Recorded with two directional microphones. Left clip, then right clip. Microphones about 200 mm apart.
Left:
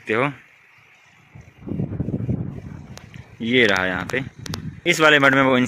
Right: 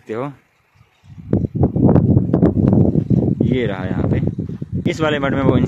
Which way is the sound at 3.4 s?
5° right (ahead or behind).